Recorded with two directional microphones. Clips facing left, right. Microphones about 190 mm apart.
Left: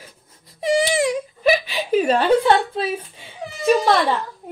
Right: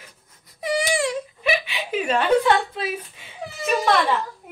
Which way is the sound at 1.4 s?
40° left (ahead or behind).